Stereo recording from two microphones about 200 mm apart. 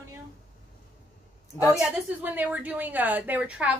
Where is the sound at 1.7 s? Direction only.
10° right (ahead or behind).